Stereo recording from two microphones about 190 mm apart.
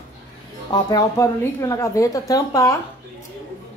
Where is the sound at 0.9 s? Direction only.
15° left (ahead or behind).